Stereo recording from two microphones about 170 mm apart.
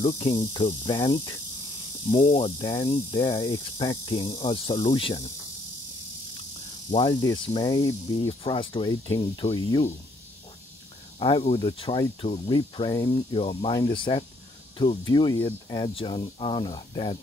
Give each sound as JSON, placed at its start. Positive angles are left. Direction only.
{"t": 0.0, "sound": "speech", "side_deg": 25}
{"t": 6.9, "sound": "speech", "side_deg": 30}
{"t": 11.1, "sound": "speech", "side_deg": 30}